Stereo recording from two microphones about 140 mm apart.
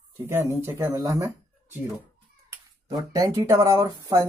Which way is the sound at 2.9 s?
25° right (ahead or behind).